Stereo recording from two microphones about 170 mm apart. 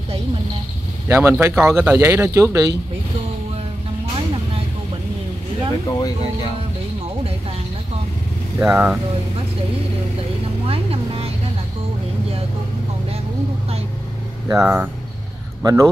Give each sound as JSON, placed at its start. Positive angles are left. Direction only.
{"t": 1.0, "sound": "speech", "side_deg": -15}
{"t": 5.9, "sound": "speech", "side_deg": 20}
{"t": 8.6, "sound": "speech", "side_deg": -5}
{"t": 10.7, "sound": "vehicle", "side_deg": -35}
{"t": 14.5, "sound": "speech", "side_deg": -15}